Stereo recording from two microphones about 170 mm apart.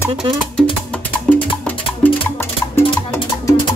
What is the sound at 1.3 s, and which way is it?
Music, 10° left (ahead or behind).